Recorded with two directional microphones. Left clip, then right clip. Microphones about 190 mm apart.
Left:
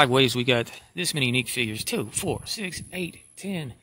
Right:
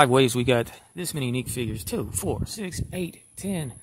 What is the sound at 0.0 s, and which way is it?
Speech, 5° right (ahead or behind).